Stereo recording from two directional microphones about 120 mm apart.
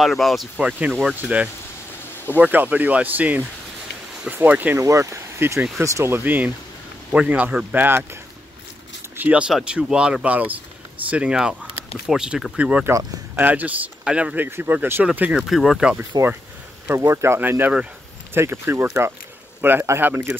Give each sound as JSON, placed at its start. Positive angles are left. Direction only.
{"t": 0.0, "sound": "speech", "side_deg": 0}
{"t": 2.3, "sound": "speech", "side_deg": -15}
{"t": 4.8, "sound": "speech", "side_deg": -25}
{"t": 17.0, "sound": "speech", "side_deg": -25}